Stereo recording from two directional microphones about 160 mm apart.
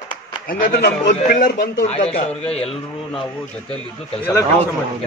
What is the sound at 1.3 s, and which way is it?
Speech, 65° left (ahead or behind).